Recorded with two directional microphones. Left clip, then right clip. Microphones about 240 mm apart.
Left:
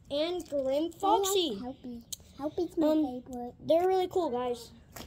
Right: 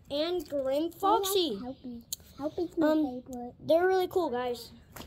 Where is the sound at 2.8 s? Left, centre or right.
Centre.